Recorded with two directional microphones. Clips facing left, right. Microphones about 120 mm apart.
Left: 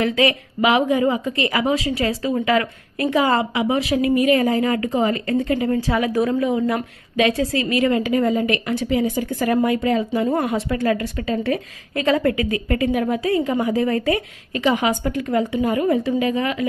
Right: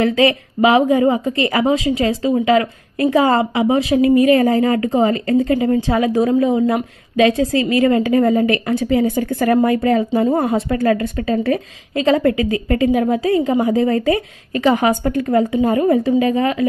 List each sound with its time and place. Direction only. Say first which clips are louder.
0.0 s speech: right 4 dB; 30° right (ahead or behind)
4.3 s a woman's voice: right 4 dB; 40° right (ahead or behind)
8.2 s a woman's voice: right 5 dB; 50° right (ahead or behind)
9.3 s speech: right 5 dB; 55° right (ahead or behind)
9.6 s a woman's voice: right 3 dB; 40° right (ahead or behind)
10.2 s speech: right 4 dB; 25° right (ahead or behind)
10.7 s a woman's voice: right 4 dB; 45° right (ahead or behind)
11.0 s a woman's voice: right 4 dB; 35° right (ahead or behind)